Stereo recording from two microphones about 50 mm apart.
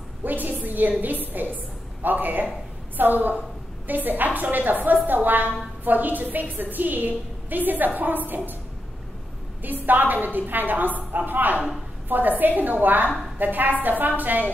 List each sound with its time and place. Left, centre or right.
0.2 s a sound: right
1.2 s a woman's voice: right
9.6 s a woman's voice: right